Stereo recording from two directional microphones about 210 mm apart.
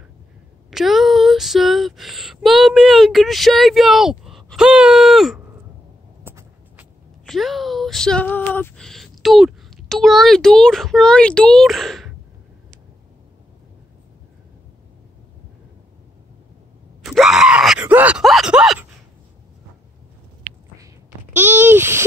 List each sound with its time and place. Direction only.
0.7 s speech: centre (ahead or behind)
6.2 s a sound: 10° right (ahead or behind)
7.2 s speech: centre (ahead or behind)
17.0 s groan: centre (ahead or behind)
21.4 s speech: 10° right (ahead or behind)